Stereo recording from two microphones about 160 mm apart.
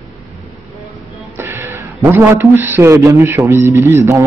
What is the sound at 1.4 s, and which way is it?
A man's voice, 15° right (ahead or behind).